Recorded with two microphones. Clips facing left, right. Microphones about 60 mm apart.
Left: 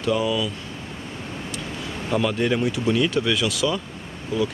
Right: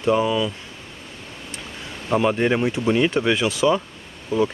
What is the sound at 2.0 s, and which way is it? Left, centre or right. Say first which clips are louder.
Speech: right 3 dB; right.